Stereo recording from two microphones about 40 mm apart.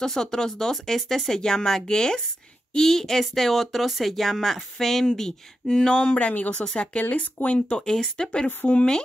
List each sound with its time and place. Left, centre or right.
0.0 s speech: centre
6.2 s speech: left
7.7 s speech: centre